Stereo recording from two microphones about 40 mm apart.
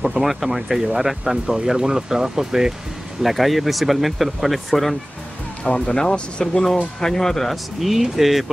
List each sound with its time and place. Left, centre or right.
0.0 s speech: centre
3.2 s speech: centre
5.6 s speech: left
7.8 s speech: centre